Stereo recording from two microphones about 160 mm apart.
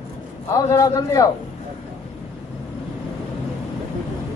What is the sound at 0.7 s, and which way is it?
Speech, 20° left (ahead or behind).